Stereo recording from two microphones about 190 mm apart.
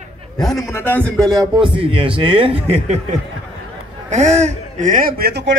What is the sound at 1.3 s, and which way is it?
A man's voice, 25° right (ahead or behind).